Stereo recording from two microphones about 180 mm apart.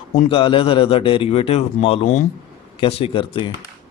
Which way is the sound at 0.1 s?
30° left (ahead or behind).